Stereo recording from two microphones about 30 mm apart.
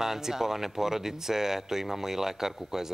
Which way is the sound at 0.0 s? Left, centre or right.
Centre.